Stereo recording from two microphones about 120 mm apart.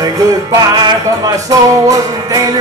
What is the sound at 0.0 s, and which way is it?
Music, 30° right (ahead or behind).